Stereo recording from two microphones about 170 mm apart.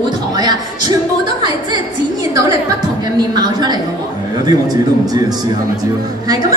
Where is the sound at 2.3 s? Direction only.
20° right (ahead or behind).